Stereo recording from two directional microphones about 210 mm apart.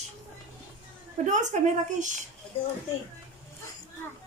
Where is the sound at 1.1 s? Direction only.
35° right (ahead or behind).